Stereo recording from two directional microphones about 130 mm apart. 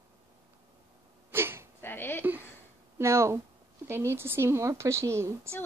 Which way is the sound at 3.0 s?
20° right (ahead or behind).